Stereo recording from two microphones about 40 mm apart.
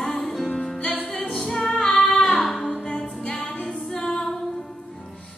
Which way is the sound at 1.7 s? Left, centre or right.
Centre.